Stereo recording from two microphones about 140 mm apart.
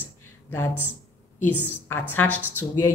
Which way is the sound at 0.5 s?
15° left (ahead or behind).